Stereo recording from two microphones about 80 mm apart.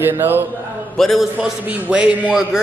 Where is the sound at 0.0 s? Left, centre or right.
Right.